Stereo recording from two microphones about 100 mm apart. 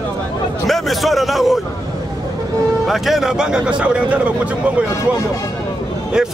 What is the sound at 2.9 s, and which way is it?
A man's voice, centre (ahead or behind).